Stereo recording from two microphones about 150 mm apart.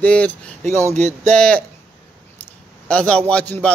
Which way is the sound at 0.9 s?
50° right (ahead or behind).